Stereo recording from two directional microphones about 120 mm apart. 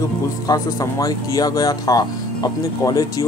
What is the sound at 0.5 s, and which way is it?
Speech, 30° left (ahead or behind).